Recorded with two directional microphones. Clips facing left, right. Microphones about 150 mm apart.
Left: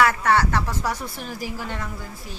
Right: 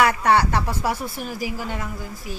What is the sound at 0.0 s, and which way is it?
A woman's voice, 15° right (ahead or behind).